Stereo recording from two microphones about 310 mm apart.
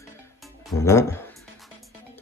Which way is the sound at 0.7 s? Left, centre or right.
Centre.